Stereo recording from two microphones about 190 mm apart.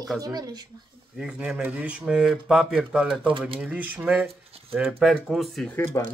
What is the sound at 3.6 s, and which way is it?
Speech, 10° right (ahead or behind).